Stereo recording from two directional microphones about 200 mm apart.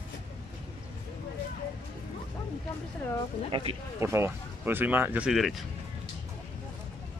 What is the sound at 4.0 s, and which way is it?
Speech, 15° right (ahead or behind).